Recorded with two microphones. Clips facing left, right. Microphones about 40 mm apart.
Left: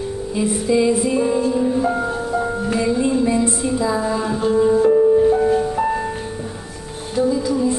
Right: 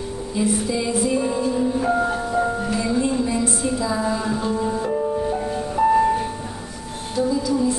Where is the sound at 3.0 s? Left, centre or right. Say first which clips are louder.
Left 4 dB; centre.